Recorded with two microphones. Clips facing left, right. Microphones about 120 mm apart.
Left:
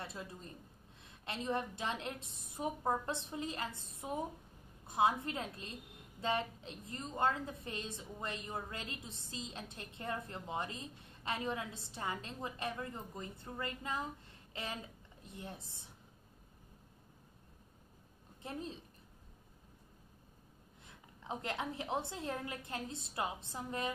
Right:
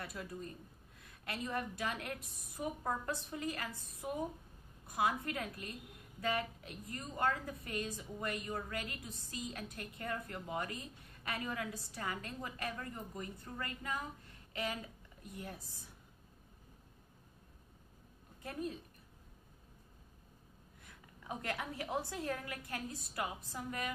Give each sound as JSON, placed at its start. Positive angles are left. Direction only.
{"t": 0.0, "sound": "a woman's voice", "side_deg": 25}
{"t": 18.4, "sound": "a woman's voice", "side_deg": 25}
{"t": 20.8, "sound": "a woman's voice", "side_deg": 20}